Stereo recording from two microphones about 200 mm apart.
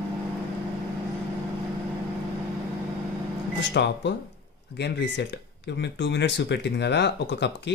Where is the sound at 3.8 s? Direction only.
55° left (ahead or behind).